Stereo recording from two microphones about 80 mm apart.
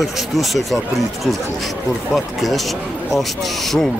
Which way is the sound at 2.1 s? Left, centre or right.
Centre.